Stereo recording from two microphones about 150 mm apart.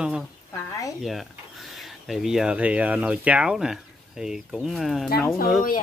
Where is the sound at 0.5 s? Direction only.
20° left (ahead or behind).